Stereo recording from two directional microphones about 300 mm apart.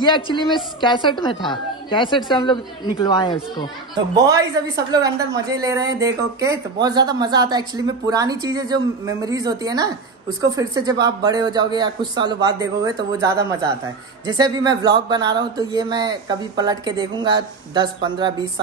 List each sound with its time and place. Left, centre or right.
0.0 s a woman's voice: centre
3.9 s speech: centre